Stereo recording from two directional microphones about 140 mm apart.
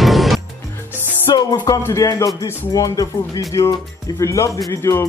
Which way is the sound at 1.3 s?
30° left (ahead or behind).